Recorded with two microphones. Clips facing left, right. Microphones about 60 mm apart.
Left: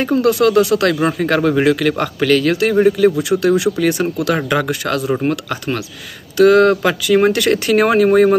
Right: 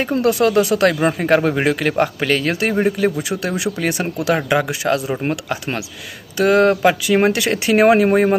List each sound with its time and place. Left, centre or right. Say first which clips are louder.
0.0 s a man's voice: left 3 dB; right